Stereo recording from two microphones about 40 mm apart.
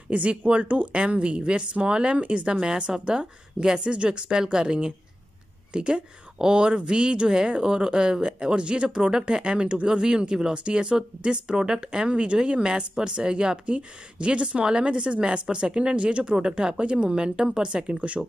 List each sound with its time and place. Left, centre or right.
0.1 s speech: right
2.5 s speech: centre
17.8 s speech: right